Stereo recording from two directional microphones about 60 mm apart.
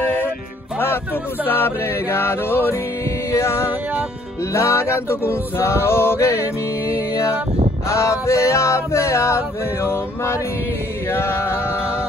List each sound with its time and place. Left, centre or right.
1.4 s music: left
3.3 s music: left
4.6 s male singing: left
7.9 s male singing: left